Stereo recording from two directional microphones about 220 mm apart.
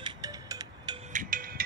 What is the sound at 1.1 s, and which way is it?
Music, 40° right (ahead or behind).